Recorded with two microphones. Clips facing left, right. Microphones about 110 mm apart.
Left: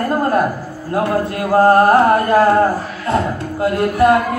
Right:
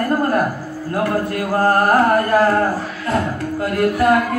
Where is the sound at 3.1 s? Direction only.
25° left (ahead or behind).